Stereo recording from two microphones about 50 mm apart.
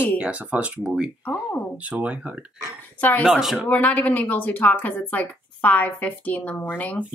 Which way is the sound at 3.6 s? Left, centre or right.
Left.